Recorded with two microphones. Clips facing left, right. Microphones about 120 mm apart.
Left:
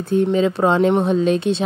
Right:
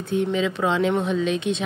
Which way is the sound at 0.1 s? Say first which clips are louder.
Left 6 dB; 40° left (ahead or behind).